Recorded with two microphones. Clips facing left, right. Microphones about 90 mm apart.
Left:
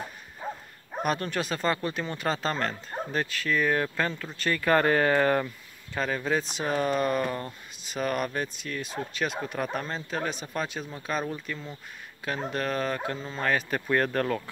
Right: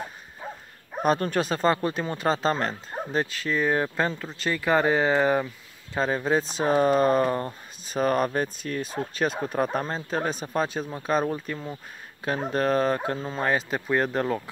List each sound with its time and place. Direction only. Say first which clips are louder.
0.4 s dog: left 2 dB; 5° right (ahead or behind)
1.0 s speech: right 6 dB; 35° right (ahead or behind); by 5.5 s 15° right (ahead or behind)
5.9 s speech: right 4 dB; 30° right (ahead or behind)
13.4 s speech: right 1 dB; 25° right (ahead or behind)